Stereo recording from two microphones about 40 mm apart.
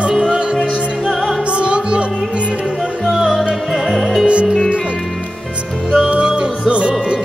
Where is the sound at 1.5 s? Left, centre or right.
Right.